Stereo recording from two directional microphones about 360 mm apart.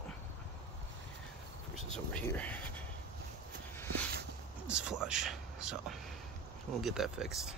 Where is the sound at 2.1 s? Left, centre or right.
Centre.